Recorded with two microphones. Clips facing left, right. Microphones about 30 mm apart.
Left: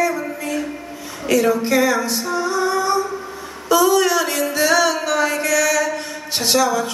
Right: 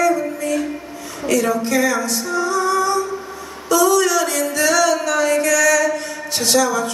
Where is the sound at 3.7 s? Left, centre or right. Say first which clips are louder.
Even; left.